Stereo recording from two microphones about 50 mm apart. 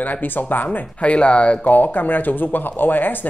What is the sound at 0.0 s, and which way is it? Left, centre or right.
Speech, left.